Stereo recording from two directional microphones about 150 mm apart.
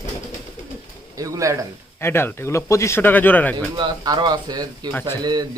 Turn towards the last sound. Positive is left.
turn(degrees=-30)  # may be behind; listen again after turning